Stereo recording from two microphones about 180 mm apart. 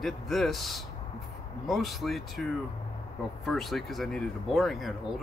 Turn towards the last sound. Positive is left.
turn(degrees=0)  # may be behind; listen again after turning